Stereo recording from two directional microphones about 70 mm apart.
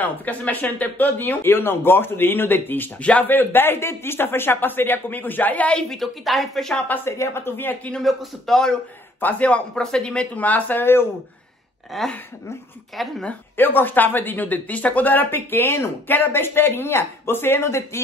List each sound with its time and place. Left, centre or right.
0.0 s speech: left
5.9 s speech: centre
6.9 s speech: left
8.0 s speech: centre
9.2 s speech: centre
11.9 s speech: centre
13.6 s speech: left